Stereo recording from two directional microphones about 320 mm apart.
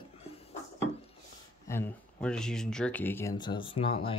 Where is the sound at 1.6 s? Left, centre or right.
Centre.